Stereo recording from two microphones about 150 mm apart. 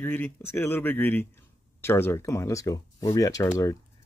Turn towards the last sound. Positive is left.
turn(degrees=20)  # may be behind; listen again after turning